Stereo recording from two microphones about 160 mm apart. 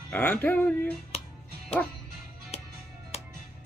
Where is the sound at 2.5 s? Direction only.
40° left (ahead or behind).